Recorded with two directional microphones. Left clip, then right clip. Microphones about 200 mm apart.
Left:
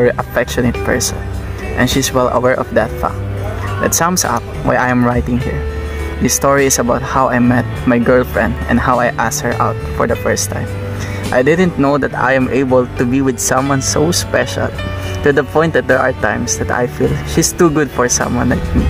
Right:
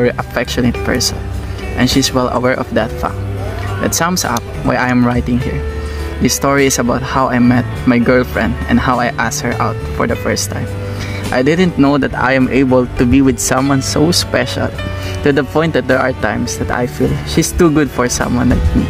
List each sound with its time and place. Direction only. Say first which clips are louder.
0.0 s speech: left 2 dB; 20° right (ahead or behind)
6.4 s speech: left 1 dB; 20° right (ahead or behind)
11.3 s speech: left 1 dB; 20° right (ahead or behind)